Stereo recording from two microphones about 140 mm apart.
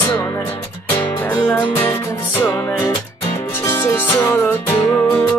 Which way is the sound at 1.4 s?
20° left (ahead or behind).